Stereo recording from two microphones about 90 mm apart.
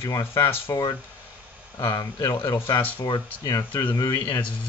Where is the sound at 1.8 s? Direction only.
55° left (ahead or behind).